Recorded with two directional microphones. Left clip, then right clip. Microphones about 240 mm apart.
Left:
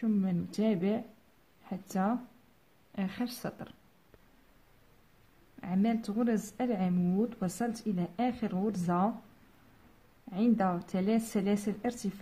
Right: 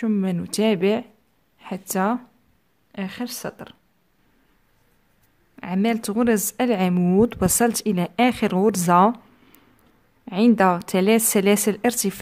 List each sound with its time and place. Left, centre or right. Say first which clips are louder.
0.0 s speech: right 9 dB; right
5.6 s speech: right 10 dB; right
10.3 s speech: right 13 dB; right